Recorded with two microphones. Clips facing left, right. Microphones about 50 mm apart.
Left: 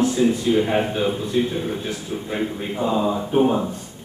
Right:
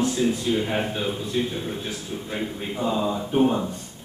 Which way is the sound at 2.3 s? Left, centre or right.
Centre.